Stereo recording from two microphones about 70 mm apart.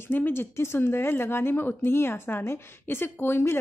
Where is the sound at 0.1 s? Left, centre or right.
Left.